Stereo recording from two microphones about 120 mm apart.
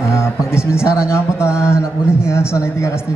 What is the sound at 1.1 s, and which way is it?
Speech, 20° left (ahead or behind).